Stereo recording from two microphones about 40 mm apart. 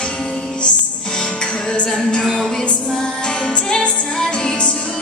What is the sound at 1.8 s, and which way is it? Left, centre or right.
Music, centre.